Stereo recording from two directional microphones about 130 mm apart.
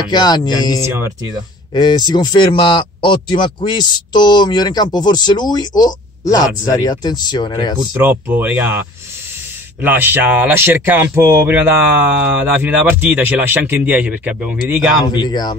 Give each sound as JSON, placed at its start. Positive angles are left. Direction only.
{"t": 0.1, "sound": "speech", "side_deg": 30}
{"t": 8.0, "sound": "speech", "side_deg": -15}
{"t": 15.1, "sound": "speech", "side_deg": 30}